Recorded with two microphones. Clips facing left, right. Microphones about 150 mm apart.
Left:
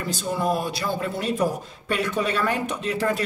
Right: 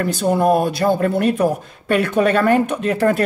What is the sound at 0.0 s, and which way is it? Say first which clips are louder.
Speech: right 9 dB; 60° right (ahead or behind).